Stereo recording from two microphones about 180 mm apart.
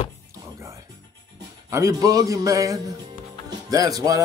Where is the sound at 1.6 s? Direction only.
15° right (ahead or behind).